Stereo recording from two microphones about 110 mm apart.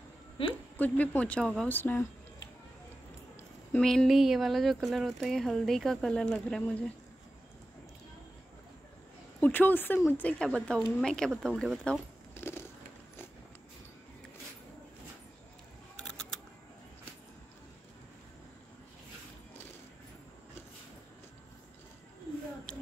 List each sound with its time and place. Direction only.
0.5 s a woman's voice: 15° left (ahead or behind)
3.7 s speech: 5° left (ahead or behind)
9.4 s speech: 15° left (ahead or behind); by 12.0 s centre (ahead or behind)
12.4 s a sound: 25° left (ahead or behind)
16.0 s camera: 5° left (ahead or behind)